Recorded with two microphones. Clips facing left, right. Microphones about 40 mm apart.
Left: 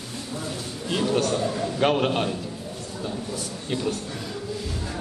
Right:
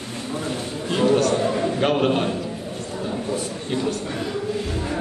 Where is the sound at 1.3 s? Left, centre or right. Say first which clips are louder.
Right 5 dB; right.